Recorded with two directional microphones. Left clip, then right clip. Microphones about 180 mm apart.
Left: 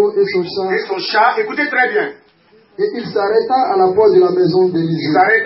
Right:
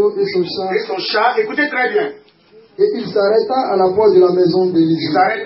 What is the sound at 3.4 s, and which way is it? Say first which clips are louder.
Speech: left 2 dB; 50° right (ahead or behind).